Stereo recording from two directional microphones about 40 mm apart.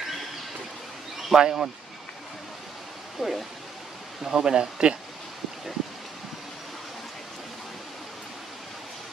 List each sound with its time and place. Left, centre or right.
1.3 s speech: centre
3.2 s speech: centre; by 4.9 s right